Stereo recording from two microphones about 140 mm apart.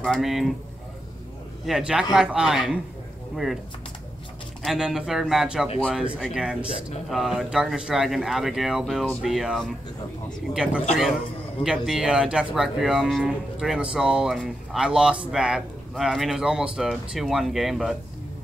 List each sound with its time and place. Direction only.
0.0 s speech: centre (ahead or behind)
1.7 s speech: 5° right (ahead or behind)
4.6 s speech: 5° right (ahead or behind)